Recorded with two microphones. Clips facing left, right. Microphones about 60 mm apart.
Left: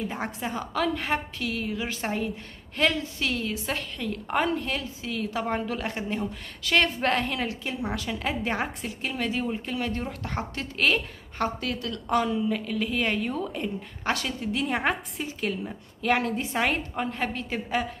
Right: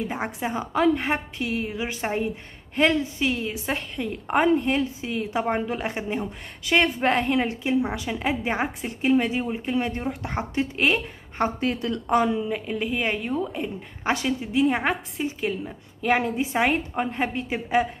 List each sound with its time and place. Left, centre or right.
0.1 s a woman's voice: centre